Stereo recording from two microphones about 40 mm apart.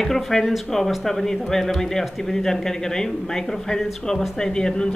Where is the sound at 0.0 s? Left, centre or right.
Centre.